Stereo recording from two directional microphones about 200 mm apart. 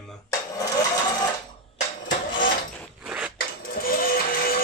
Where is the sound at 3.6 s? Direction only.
45° left (ahead or behind).